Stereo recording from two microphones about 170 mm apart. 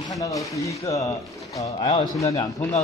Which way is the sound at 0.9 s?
Centre (ahead or behind).